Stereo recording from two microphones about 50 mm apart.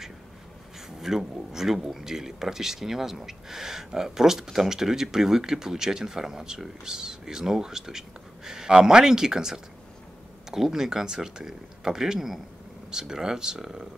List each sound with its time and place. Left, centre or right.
0.7 s speech: centre